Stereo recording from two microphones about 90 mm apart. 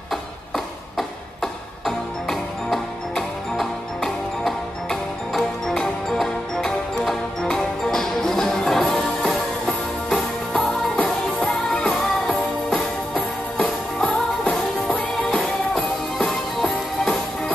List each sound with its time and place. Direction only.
0.9 s music: centre (ahead or behind)
11.9 s music: 5° left (ahead or behind)